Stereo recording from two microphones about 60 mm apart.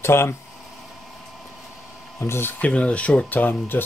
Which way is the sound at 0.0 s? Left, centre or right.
Left.